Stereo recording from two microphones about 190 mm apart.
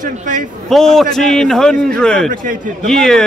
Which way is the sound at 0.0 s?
45° right (ahead or behind).